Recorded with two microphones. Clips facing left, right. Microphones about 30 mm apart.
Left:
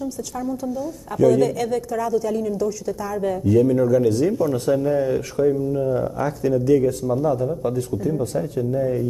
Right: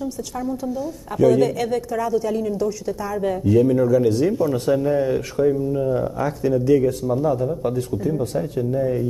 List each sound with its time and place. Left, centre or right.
1.2 s speech: right